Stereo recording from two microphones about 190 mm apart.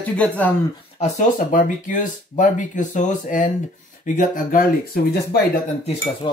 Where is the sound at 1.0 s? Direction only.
40° left (ahead or behind).